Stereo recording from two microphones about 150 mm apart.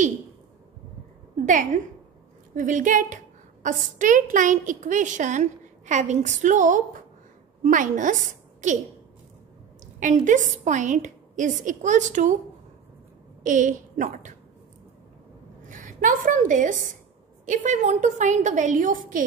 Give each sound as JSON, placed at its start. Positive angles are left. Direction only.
{"t": 1.4, "sound": "a woman's voice", "side_deg": -60}
{"t": 9.9, "sound": "a woman's voice", "side_deg": -60}
{"t": 13.4, "sound": "a woman's voice", "side_deg": -60}
{"t": 15.7, "sound": "a woman's voice", "side_deg": -60}